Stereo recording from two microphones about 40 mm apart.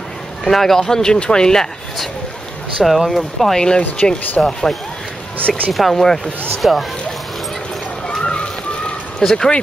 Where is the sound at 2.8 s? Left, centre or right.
Centre.